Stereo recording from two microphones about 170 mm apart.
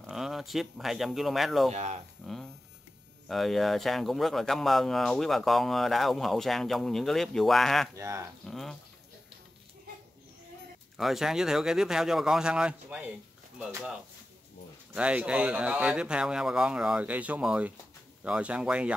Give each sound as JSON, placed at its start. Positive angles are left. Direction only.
{"t": 0.0, "sound": "speech", "side_deg": 0}
{"t": 1.7, "sound": "speech", "side_deg": -40}
{"t": 2.2, "sound": "a sound", "side_deg": 0}
{"t": 3.3, "sound": "speech", "side_deg": 0}
{"t": 7.9, "sound": "speech", "side_deg": -15}
{"t": 8.5, "sound": "a sound", "side_deg": 0}
{"t": 11.0, "sound": "speech", "side_deg": 0}
{"t": 15.0, "sound": "speech", "side_deg": -5}